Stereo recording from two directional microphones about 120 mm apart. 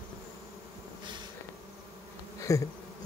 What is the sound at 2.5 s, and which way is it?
Bee, 25° left (ahead or behind).